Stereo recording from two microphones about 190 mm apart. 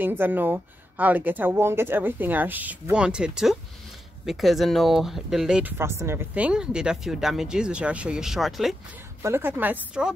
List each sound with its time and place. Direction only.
0.0 s speech: 10° right (ahead or behind)
9.2 s speech: 10° right (ahead or behind)